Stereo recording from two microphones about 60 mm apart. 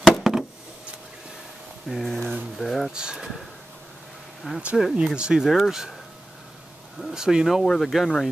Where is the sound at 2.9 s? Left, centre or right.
Centre.